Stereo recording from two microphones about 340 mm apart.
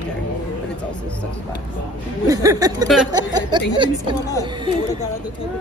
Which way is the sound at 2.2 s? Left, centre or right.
Centre.